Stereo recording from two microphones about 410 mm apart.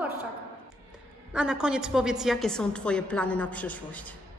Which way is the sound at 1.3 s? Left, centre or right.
Centre.